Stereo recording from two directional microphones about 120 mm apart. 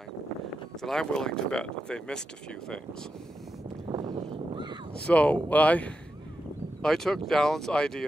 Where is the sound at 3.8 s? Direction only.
40° right (ahead or behind).